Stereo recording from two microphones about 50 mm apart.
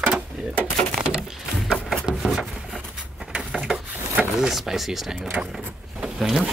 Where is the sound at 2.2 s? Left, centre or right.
Centre.